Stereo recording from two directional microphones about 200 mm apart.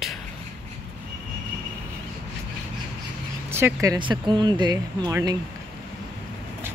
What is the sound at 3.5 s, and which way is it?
Speech, 15° right (ahead or behind).